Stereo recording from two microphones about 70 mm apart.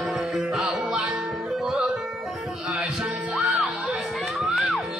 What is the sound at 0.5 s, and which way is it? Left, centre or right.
Music, centre.